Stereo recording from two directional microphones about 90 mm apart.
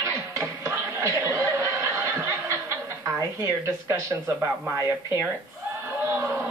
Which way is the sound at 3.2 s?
35° right (ahead or behind).